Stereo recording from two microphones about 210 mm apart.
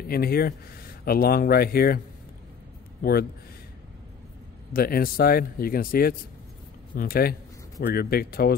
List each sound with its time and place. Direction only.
0.1 s speech: 45° left (ahead or behind)
3.0 s a man's voice: 45° left (ahead or behind)
4.7 s speech: 45° left (ahead or behind)